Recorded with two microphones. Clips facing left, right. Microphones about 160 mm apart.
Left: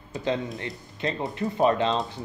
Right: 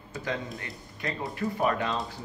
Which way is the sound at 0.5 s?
25° left (ahead or behind).